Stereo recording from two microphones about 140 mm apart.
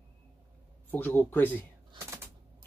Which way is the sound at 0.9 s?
15° left (ahead or behind).